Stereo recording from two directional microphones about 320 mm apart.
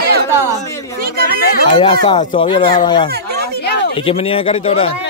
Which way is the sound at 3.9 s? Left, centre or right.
Centre.